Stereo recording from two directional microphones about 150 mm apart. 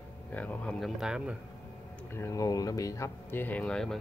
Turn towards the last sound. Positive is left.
turn(degrees=5)  # may be behind; listen again after turning